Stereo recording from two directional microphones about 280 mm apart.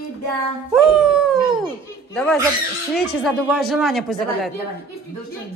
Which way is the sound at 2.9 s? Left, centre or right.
Centre.